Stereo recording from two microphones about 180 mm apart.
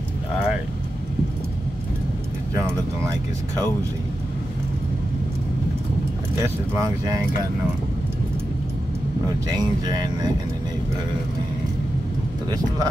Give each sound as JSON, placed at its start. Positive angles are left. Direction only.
{"t": 6.4, "sound": "speech", "side_deg": -15}